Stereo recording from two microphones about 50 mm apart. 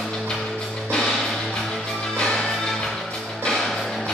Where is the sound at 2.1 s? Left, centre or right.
Centre.